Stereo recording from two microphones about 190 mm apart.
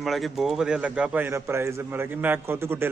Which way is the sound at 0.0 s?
Centre (ahead or behind).